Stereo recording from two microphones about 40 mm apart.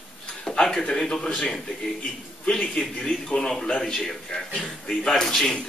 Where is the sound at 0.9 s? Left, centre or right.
Centre.